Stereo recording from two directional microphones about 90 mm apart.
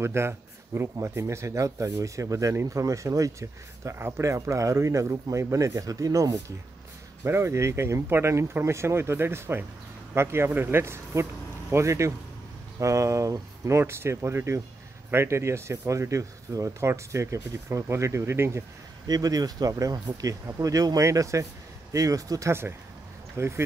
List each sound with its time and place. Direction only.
0.0 s speech: 30° right (ahead or behind)
7.2 s speech: 30° right (ahead or behind)
19.0 s speech: 45° right (ahead or behind)
22.5 s speech: 25° right (ahead or behind)